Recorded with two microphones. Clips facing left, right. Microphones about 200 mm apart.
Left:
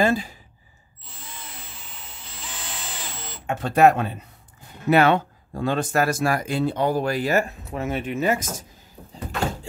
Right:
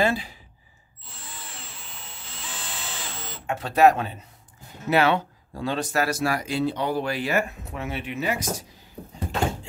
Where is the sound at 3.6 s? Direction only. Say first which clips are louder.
Left 1 dB; 50° left (ahead or behind).